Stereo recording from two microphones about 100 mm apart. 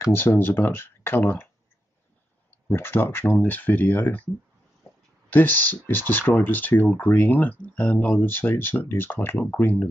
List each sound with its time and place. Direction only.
0.1 s speech: 20° left (ahead or behind)
2.7 s speech: 20° left (ahead or behind)
5.3 s speech: 20° left (ahead or behind)